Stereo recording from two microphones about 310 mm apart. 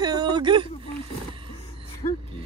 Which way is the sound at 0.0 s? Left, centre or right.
Centre.